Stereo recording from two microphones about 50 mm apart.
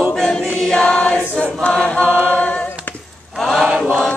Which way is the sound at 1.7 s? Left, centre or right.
Left.